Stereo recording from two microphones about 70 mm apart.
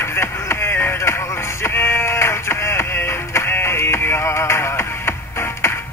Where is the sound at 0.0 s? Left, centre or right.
Left.